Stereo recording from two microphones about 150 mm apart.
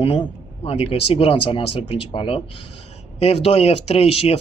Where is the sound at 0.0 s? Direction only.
40° left (ahead or behind).